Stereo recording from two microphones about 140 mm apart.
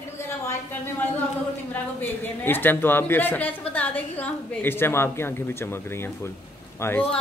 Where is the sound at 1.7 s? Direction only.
15° left (ahead or behind).